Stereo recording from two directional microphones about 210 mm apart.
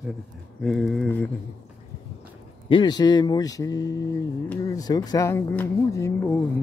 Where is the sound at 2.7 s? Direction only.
20° left (ahead or behind).